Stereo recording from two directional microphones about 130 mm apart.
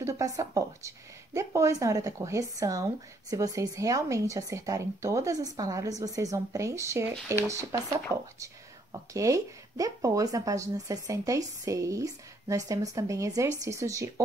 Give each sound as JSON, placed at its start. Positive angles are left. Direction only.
{"t": 0.0, "sound": "a woman's voice", "side_deg": -25}